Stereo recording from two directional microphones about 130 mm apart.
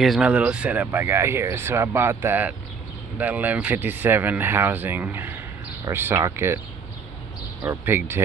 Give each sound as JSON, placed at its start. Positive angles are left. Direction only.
{"t": 0.0, "sound": "speech", "side_deg": 0}
{"t": 7.6, "sound": "speech", "side_deg": -15}